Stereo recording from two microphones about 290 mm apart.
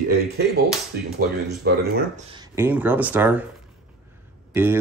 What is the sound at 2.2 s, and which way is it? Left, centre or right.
Speech, centre.